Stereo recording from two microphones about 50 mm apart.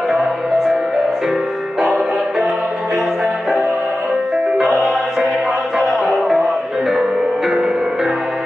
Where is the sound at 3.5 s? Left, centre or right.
Centre.